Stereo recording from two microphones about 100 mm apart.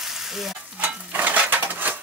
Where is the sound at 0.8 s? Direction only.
15° right (ahead or behind).